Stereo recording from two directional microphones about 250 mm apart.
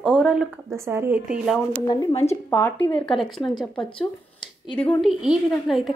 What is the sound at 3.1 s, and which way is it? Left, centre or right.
Speech, centre.